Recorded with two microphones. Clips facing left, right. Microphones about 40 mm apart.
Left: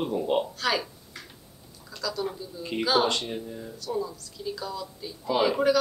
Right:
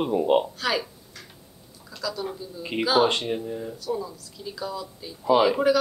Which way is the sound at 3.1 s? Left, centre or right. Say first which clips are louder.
Right 4 dB; right.